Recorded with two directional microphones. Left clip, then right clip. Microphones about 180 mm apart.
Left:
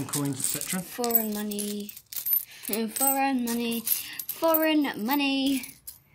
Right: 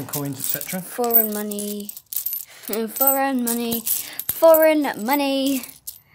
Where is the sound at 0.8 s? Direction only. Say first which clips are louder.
Right 8 dB; 20° right (ahead or behind).